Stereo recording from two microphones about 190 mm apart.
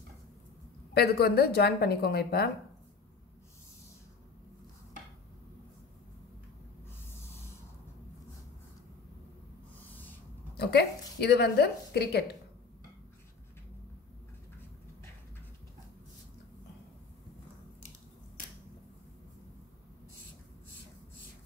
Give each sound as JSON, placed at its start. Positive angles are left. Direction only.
{"t": 0.9, "sound": "a woman's voice", "side_deg": 55}
{"t": 10.6, "sound": "a woman's voice", "side_deg": 55}